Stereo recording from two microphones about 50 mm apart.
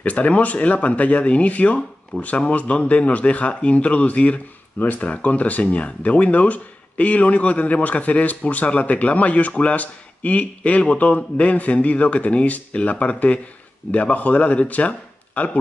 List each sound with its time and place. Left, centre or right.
0.0 s speech: left